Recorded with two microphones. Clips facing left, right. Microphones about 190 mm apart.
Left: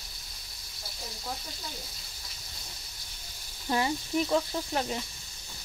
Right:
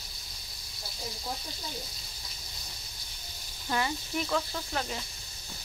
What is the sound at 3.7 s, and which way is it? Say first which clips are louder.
Speech: left 3 dB; 25° left (ahead or behind).